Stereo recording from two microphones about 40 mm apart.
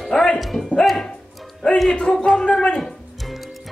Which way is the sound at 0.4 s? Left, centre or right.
Centre.